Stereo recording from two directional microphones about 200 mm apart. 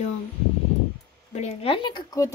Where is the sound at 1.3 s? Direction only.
30° left (ahead or behind).